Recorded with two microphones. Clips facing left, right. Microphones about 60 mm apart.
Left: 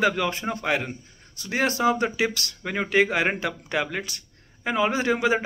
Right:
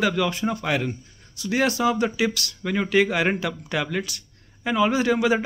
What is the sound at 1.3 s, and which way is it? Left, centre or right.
Speech, left.